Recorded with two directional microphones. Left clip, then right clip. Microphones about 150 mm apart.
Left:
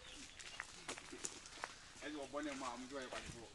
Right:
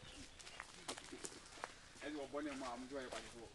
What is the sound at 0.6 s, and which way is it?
Run, centre (ahead or behind).